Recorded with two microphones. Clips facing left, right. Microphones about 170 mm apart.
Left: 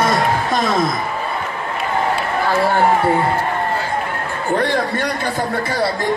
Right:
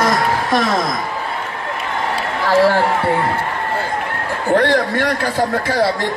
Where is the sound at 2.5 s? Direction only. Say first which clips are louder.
Right 5 dB; 90° right.